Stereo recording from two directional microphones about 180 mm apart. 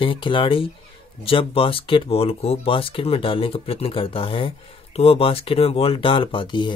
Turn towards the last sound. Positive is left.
turn(degrees=25)  # may be behind; listen again after turning